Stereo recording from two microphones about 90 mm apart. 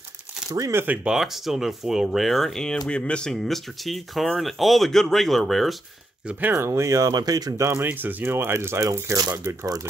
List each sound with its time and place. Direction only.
0.5 s speech: 35° right (ahead or behind)
0.8 s speech: 5° right (ahead or behind)
6.5 s speech: 30° right (ahead or behind)
7.8 s speech: 20° right (ahead or behind); by 9.3 s 40° right (ahead or behind)
9.3 s speech: 30° right (ahead or behind)